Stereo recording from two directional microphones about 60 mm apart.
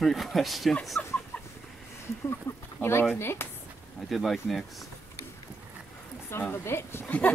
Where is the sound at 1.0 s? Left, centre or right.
Left.